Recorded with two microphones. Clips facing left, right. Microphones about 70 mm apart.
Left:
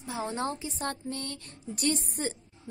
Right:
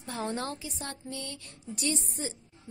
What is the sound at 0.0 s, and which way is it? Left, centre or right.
Speech, centre.